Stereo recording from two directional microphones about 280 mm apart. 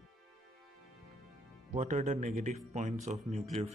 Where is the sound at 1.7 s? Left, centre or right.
Right.